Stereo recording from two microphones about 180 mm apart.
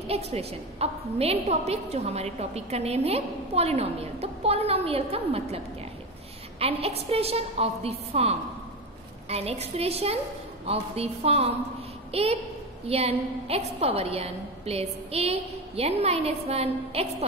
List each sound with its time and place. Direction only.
0.1 s a woman's voice: 35° right (ahead or behind)
6.6 s a woman's voice: 35° right (ahead or behind)